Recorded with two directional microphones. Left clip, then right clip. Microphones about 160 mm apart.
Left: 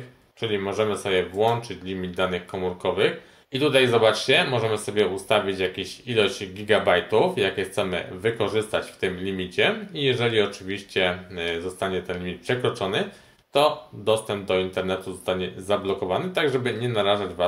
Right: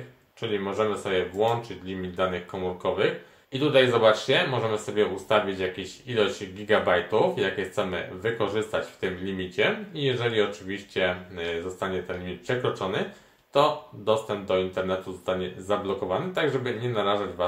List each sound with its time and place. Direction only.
0.4 s speech: 45° left (ahead or behind)